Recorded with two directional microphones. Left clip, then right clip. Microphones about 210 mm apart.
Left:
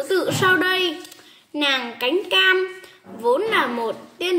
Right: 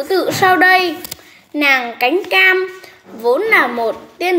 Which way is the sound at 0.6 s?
10° left (ahead or behind).